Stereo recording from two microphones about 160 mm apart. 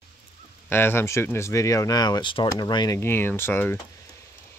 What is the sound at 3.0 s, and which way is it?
Speech, 15° left (ahead or behind).